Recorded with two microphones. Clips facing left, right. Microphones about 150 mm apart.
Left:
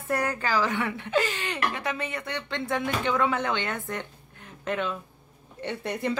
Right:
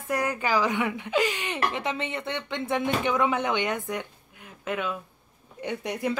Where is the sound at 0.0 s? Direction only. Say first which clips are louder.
Even; 10° right (ahead or behind).